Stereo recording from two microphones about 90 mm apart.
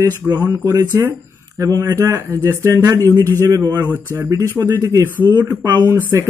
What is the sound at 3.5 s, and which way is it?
Speech, 40° right (ahead or behind).